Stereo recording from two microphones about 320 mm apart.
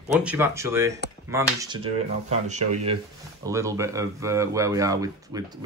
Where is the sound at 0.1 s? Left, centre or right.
Centre.